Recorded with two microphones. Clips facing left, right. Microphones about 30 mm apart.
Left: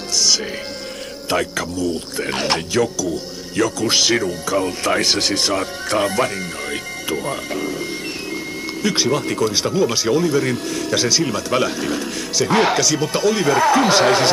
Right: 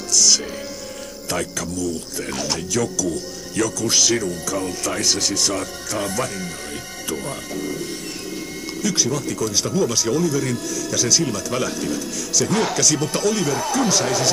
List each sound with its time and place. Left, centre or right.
0.1 s a man's voice: left
3.5 s speech: left
7.1 s speech: left
7.4 s speech: left
8.8 s speech: left
11.1 s speech: left
12.8 s speech: left
13.5 s speech: left